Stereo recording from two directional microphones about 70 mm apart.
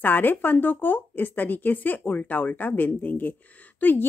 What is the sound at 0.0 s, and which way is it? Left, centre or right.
Speech, left.